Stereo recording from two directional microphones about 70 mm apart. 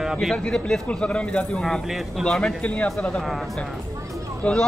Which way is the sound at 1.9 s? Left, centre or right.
Centre.